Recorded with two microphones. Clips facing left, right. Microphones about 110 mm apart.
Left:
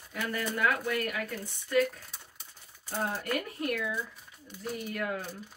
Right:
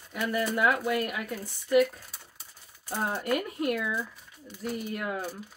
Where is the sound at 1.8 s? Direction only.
Centre (ahead or behind).